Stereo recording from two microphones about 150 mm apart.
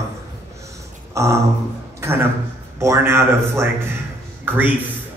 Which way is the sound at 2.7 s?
20° right (ahead or behind).